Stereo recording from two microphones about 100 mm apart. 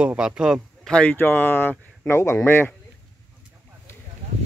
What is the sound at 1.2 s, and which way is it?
Speech, 20° left (ahead or behind).